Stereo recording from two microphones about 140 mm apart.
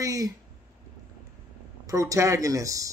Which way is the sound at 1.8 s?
25° right (ahead or behind).